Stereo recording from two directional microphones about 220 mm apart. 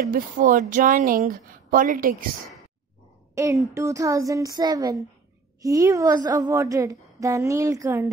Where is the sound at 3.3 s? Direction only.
15° right (ahead or behind).